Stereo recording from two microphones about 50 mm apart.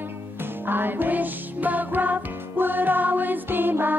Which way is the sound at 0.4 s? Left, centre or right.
Right.